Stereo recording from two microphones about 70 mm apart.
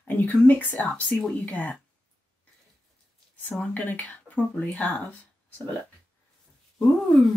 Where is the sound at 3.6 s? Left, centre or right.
Left.